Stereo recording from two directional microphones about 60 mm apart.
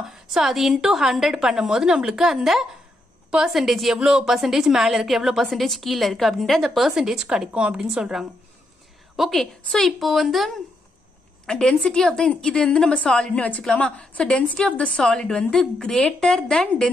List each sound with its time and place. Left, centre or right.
0.1 s a woman's voice: centre
3.5 s a woman's voice: centre
7.2 s a woman's voice: centre
9.1 s a woman's voice: centre
11.4 s a woman's voice: centre